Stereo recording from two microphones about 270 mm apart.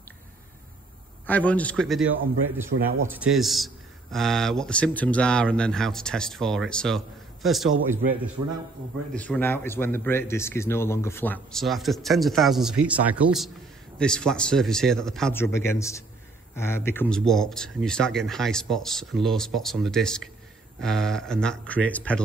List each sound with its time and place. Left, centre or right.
1.2 s speech: centre
2.7 s speech: right
3.1 s speech: centre
9.1 s speech: centre